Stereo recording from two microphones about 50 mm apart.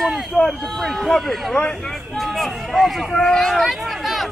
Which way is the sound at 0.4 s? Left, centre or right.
Centre.